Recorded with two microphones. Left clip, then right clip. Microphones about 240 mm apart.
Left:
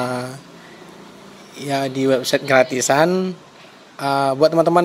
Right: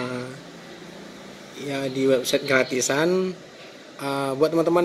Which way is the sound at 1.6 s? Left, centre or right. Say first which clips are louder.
Left 5 dB; left.